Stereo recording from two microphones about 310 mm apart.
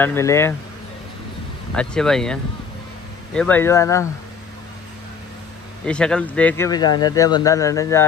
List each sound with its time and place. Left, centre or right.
0.0 s speech: centre
1.8 s speech: centre
3.3 s speech: centre
5.9 s speech: centre